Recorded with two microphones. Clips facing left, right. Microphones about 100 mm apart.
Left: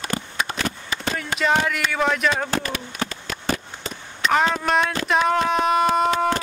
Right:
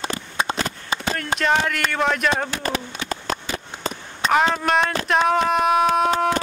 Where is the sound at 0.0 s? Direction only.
30° right (ahead or behind).